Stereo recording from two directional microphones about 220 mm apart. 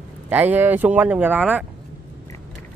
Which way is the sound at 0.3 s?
10° right (ahead or behind).